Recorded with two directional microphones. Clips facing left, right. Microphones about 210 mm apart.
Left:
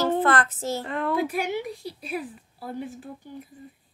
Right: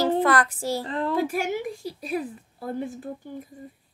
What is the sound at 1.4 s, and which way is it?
A woman's voice, 45° right (ahead or behind).